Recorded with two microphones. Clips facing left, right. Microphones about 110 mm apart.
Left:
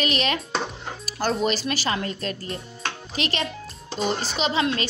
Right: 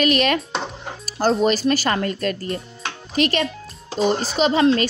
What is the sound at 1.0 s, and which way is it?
Speech, 40° right (ahead or behind).